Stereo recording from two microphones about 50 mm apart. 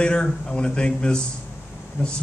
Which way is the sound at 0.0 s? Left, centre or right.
Centre.